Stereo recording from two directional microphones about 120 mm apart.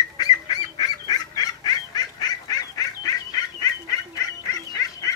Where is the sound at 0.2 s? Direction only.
35° left (ahead or behind).